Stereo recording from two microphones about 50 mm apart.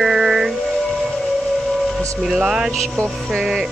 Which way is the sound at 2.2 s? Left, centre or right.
Centre.